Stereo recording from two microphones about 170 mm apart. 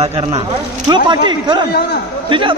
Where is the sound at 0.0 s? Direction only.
35° right (ahead or behind).